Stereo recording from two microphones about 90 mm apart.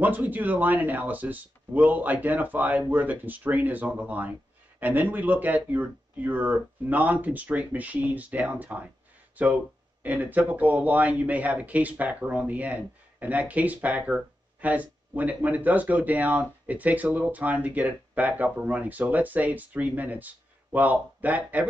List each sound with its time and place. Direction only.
0.0 s speech: 20° right (ahead or behind)